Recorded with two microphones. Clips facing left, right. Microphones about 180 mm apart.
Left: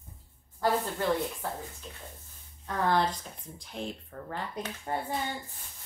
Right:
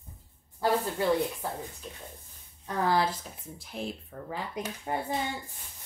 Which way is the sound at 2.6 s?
5° right (ahead or behind).